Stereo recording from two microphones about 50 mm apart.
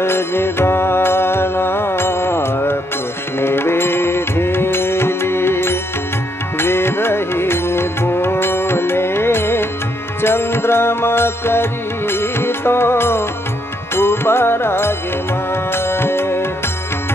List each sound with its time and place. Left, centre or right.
0.0 s music: left